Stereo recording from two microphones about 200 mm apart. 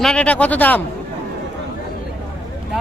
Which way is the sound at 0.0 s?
5° left (ahead or behind).